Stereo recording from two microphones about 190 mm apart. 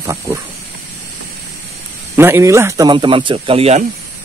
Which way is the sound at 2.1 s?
10° right (ahead or behind).